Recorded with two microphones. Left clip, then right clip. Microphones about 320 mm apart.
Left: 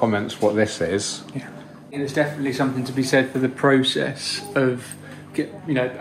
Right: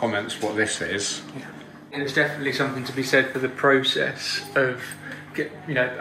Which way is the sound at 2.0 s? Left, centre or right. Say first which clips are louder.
Even; left.